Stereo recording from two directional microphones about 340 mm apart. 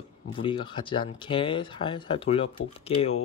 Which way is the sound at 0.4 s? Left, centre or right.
Centre.